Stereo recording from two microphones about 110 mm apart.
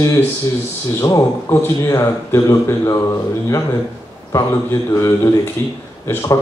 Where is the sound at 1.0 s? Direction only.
25° left (ahead or behind).